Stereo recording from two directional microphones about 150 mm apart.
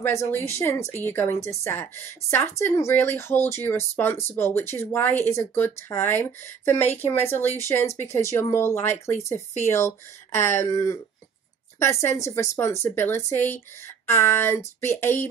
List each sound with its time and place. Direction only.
0.0 s speech: 15° left (ahead or behind)